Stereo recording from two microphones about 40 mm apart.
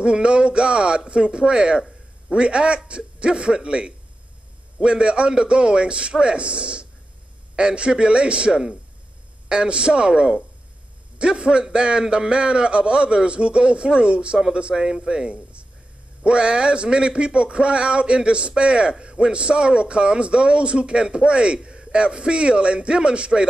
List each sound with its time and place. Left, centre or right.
0.0 s speech: right